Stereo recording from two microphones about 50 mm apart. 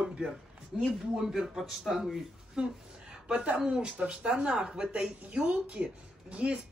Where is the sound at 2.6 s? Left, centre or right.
Centre.